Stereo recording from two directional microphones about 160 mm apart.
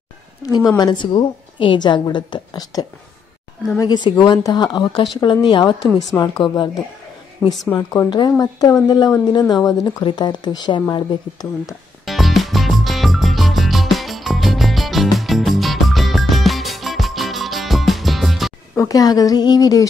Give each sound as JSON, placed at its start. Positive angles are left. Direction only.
{"t": 0.5, "sound": "a woman's voice", "side_deg": 25}
{"t": 7.4, "sound": "speech", "side_deg": 10}
{"t": 7.7, "sound": "a woman's voice", "side_deg": 25}
{"t": 12.1, "sound": "music", "side_deg": 0}
{"t": 18.8, "sound": "a woman's voice", "side_deg": 20}